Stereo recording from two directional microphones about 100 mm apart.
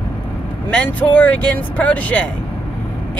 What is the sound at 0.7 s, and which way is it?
Speech, 15° left (ahead or behind).